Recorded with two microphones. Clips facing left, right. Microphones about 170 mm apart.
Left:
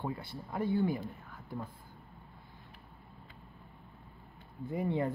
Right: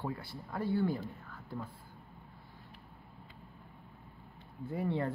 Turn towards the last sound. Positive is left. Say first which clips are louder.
# left 1 dB
turn(degrees=15)  # may be behind; listen again after turning